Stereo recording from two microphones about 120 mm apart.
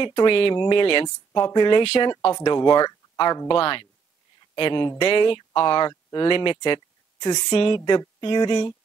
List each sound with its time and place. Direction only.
0.0 s speech: 45° left (ahead or behind)
2.3 s speech: 35° left (ahead or behind)
7.5 s speech: 45° left (ahead or behind)